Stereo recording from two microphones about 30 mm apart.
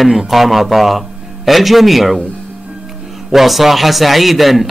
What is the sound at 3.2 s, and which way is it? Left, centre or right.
A man's voice, centre.